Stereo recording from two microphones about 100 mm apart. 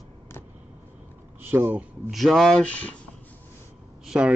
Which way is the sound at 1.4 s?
20° right (ahead or behind).